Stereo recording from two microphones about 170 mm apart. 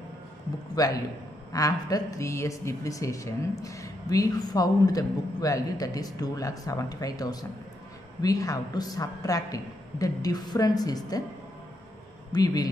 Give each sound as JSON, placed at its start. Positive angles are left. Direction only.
{"t": 0.7, "sound": "a man's voice", "side_deg": 20}
{"t": 12.3, "sound": "a man's voice", "side_deg": 20}